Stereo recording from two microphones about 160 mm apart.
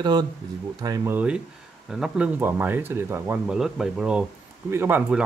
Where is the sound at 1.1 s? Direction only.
5° right (ahead or behind).